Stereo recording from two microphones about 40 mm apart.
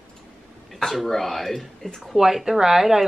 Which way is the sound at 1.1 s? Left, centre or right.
Centre.